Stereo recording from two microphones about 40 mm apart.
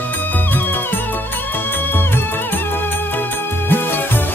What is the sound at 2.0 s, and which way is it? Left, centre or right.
Music, left.